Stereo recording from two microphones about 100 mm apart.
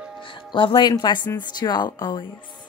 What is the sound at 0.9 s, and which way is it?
Speech, 45° left (ahead or behind).